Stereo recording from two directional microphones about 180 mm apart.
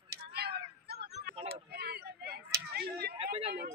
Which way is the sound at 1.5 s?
60° right (ahead or behind).